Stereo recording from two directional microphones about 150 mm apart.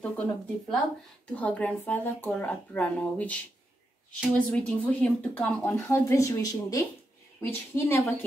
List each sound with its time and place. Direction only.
0.0 s speech: 10° left (ahead or behind)